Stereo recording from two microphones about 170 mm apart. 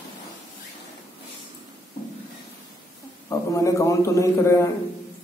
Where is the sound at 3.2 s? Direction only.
15° left (ahead or behind).